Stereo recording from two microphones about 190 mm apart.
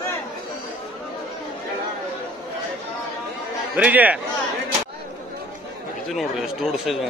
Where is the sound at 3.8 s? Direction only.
10° right (ahead or behind).